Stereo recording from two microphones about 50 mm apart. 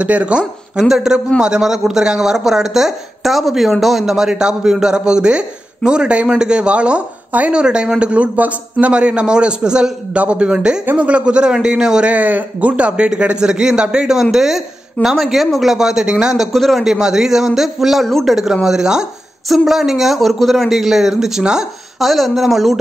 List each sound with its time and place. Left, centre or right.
0.0 s speech: right
0.8 s speech: centre
12.1 s speech: right; by 16.3 s centre
16.3 s a man's voice: centre
16.8 s speech: centre
18.0 s a man's voice: centre
18.3 s a man's voice: centre
22.0 s a man's voice: centre